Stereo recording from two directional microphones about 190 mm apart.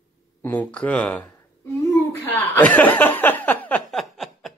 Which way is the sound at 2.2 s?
10° left (ahead or behind).